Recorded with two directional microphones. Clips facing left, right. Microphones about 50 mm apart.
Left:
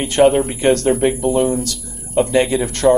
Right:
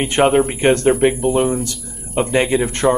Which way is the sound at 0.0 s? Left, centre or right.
Right.